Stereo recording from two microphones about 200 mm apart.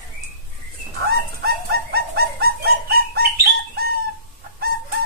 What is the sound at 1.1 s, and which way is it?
Bird, 50° right (ahead or behind).